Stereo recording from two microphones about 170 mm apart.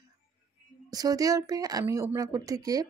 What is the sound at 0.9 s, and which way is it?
Speech, 20° right (ahead or behind).